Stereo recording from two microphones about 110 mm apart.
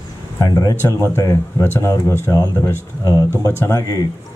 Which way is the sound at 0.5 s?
35° left (ahead or behind).